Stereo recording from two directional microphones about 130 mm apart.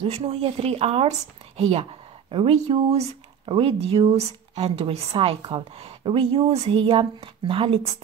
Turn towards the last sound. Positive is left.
turn(degrees=-45)  # may be behind; listen again after turning